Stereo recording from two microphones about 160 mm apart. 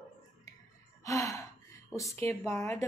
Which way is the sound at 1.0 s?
20° left (ahead or behind).